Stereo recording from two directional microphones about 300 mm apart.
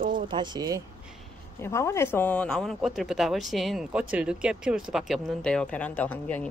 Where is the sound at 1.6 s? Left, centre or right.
Centre.